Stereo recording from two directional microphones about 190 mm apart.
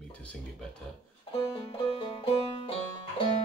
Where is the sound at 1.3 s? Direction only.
30° left (ahead or behind).